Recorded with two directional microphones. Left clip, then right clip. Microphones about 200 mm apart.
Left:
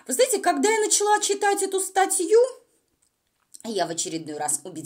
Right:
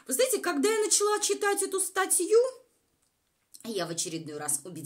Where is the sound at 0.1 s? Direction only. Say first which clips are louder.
Left 6 dB; 20° left (ahead or behind).